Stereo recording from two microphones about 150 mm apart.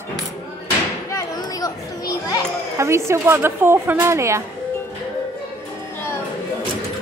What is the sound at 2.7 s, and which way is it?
Speech, 20° right (ahead or behind).